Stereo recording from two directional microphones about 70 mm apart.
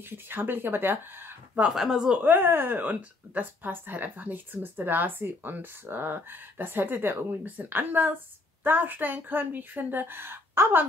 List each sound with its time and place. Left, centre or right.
0.3 s speech: right
1.8 s speech: centre
2.2 s speech: right